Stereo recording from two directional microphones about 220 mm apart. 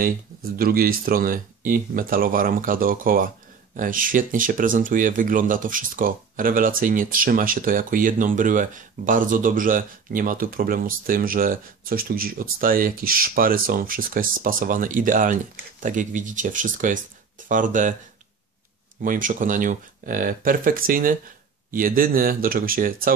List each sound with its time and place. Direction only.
0.0 s speech: 40° right (ahead or behind)
18.9 s speech: 40° right (ahead or behind)